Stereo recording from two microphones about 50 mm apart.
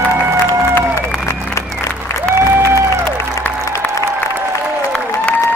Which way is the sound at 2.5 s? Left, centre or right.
Right.